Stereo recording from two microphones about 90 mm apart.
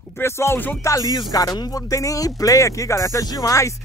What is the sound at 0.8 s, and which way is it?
Speech, 40° left (ahead or behind).